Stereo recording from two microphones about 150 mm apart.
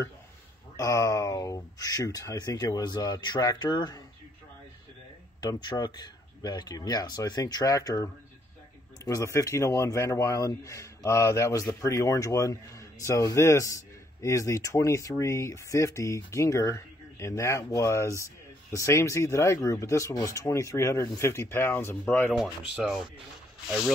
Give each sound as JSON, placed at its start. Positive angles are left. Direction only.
{"t": 0.7, "sound": "speech", "side_deg": 20}
{"t": 5.4, "sound": "speech", "side_deg": 30}
{"t": 22.3, "sound": "speech", "side_deg": -5}